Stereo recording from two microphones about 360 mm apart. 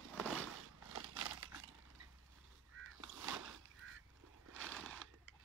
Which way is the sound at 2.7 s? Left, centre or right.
Right.